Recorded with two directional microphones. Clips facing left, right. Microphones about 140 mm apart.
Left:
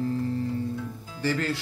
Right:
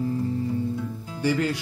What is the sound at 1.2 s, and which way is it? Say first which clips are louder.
Speech: right 3 dB; 15° right (ahead or behind).